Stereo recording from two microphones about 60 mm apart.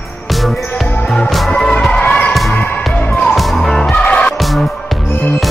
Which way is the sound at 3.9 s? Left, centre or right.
Centre.